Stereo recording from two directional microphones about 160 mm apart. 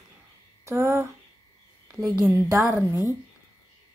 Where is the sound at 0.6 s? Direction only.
15° right (ahead or behind).